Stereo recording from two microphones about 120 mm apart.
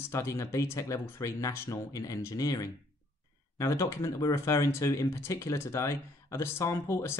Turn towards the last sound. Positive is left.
turn(degrees=25)  # may be behind; listen again after turning